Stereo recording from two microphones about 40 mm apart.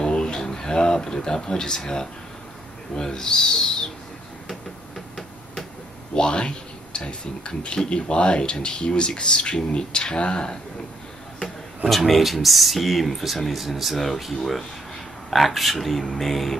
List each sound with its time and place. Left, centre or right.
0.0 s a sound: left
3.0 s owl: centre
6.1 s speech: left
12.1 s speech: centre